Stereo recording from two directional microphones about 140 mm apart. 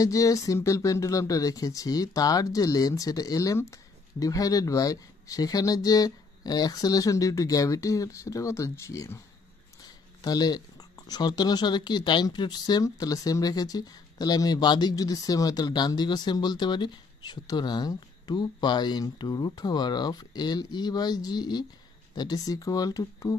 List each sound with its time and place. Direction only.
0.0 s speech: 25° left (ahead or behind)
10.2 s speech: 30° left (ahead or behind)